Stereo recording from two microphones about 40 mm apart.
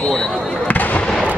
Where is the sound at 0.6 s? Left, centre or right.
Left.